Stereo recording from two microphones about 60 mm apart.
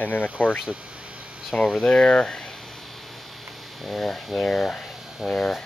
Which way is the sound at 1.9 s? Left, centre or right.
Centre.